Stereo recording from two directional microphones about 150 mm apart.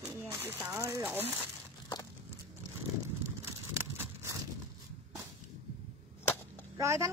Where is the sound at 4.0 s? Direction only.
15° right (ahead or behind).